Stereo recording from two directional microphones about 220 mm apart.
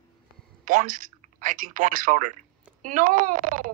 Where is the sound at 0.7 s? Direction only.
35° right (ahead or behind).